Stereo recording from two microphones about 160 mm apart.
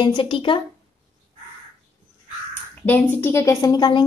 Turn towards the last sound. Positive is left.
turn(degrees=30)  # may be behind; listen again after turning